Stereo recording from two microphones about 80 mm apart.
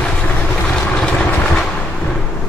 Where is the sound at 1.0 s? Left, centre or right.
Centre.